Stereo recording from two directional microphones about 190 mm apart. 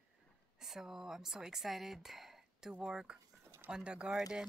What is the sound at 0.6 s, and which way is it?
A woman's voice, 5° right (ahead or behind).